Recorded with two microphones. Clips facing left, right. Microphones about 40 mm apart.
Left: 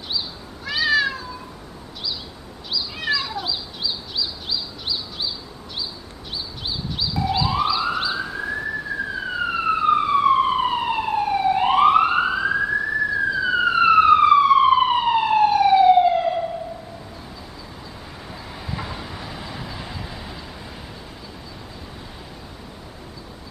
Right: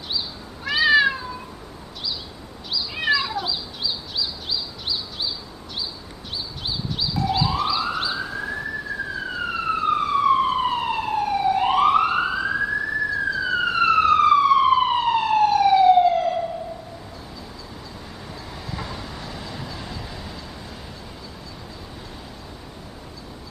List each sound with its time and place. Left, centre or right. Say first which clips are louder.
0.7 s cat: right 3 dB; centre
3.0 s cat: right 3 dB; centre
3.3 s bird: right 1 dB; centre
7.0 s police car: even; centre
9.1 s emergency vehicle: left 3 dB; centre
18.7 s train: left 2 dB; centre